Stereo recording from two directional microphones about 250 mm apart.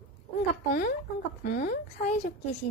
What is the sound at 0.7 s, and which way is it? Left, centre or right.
Speech, left.